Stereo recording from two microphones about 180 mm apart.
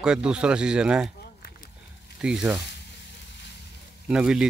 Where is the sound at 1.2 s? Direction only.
60° left (ahead or behind).